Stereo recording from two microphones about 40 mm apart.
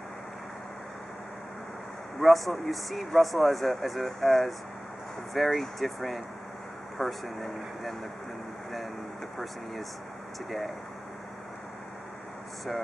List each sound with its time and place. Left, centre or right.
2.1 s speech: centre